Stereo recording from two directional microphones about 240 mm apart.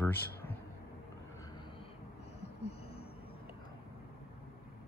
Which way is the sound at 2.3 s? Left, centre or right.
Left.